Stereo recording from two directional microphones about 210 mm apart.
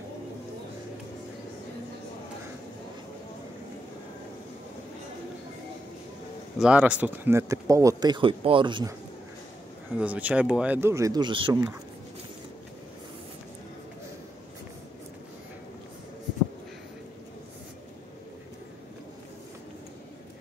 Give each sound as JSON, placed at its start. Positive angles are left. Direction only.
{"t": 6.6, "sound": "speech", "side_deg": -5}
{"t": 9.9, "sound": "speech", "side_deg": -5}